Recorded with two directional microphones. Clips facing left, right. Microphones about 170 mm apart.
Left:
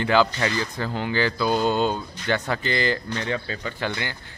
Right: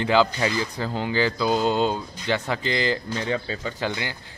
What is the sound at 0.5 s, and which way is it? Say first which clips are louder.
Speech: even; 10° right (ahead or behind).